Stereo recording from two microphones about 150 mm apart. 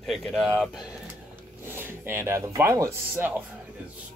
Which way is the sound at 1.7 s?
15° right (ahead or behind).